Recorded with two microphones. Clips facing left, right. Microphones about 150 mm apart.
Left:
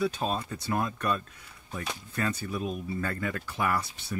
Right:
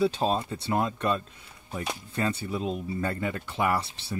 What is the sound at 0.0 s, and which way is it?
Speech, 30° right (ahead or behind).